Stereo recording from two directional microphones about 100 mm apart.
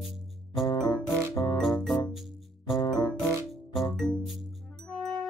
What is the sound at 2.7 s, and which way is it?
Music, 40° left (ahead or behind).